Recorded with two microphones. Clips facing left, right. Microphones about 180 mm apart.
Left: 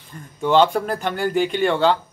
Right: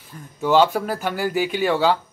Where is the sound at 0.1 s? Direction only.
5° right (ahead or behind).